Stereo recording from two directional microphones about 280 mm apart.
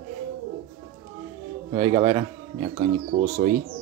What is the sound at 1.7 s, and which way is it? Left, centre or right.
Speech, centre.